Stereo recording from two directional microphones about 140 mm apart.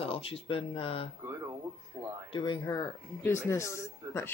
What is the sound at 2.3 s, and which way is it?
Speech, 35° left (ahead or behind).